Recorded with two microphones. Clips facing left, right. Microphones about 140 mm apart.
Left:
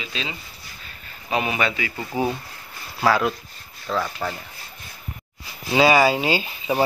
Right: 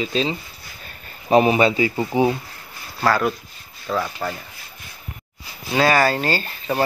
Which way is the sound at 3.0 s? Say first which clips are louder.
Even; centre (ahead or behind).